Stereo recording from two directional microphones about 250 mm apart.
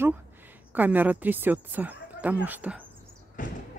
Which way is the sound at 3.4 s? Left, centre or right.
Left.